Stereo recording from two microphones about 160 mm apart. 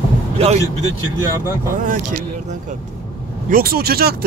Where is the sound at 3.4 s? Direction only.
65° right (ahead or behind).